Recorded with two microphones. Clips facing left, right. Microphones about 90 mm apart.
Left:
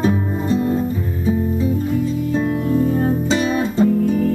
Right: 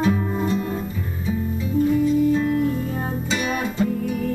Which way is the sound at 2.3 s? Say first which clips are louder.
Left 3 dB; 35° left (ahead or behind).